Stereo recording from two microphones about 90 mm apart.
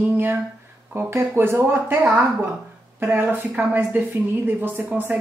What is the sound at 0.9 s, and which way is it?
Speech, 30° right (ahead or behind).